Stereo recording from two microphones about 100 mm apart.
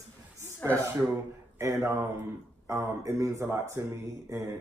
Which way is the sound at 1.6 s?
25° right (ahead or behind).